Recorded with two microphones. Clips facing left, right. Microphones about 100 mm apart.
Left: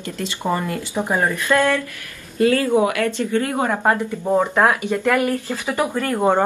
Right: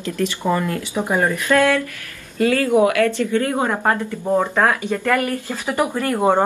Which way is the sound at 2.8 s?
20° left (ahead or behind).